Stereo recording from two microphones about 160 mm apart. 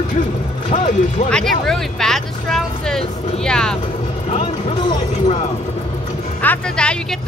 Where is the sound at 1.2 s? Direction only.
5° left (ahead or behind).